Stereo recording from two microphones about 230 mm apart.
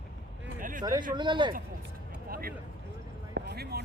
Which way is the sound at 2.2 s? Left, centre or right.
Right.